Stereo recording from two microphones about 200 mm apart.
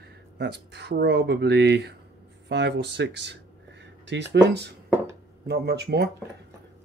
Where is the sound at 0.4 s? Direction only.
55° right (ahead or behind).